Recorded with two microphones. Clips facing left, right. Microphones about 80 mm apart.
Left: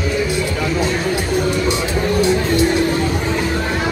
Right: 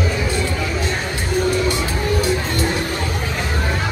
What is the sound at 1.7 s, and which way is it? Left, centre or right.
Music, left.